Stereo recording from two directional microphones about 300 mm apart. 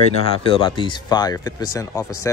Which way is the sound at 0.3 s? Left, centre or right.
Centre.